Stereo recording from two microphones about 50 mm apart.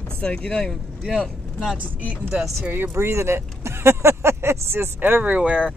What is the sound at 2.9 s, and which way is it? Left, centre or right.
Speech, right.